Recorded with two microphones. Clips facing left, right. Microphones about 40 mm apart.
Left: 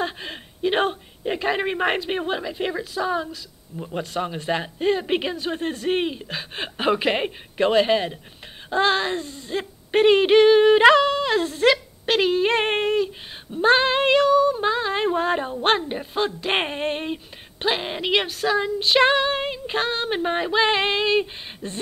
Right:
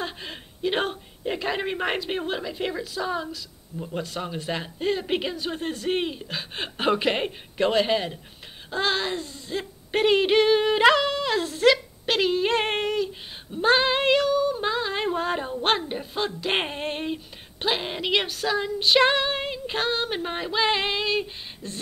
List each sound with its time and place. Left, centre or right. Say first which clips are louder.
0.0 s speech: left 5 dB; centre